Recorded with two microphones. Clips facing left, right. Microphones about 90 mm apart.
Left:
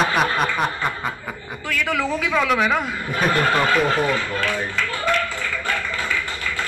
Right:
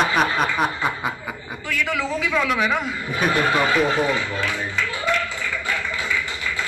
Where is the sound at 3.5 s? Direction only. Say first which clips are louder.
Left 1 dB; 10° right (ahead or behind).